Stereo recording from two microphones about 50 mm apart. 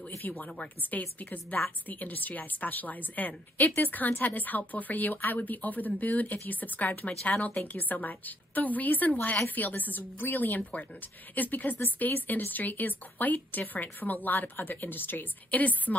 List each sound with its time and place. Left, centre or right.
0.2 s a woman's voice: left